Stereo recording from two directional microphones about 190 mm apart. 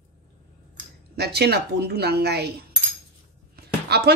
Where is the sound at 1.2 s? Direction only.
60° right (ahead or behind).